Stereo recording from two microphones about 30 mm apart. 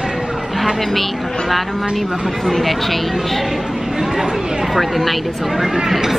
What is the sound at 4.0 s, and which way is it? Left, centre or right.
Speech, centre.